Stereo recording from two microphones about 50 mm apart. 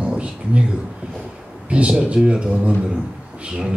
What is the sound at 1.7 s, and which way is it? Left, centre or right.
Mantra, right.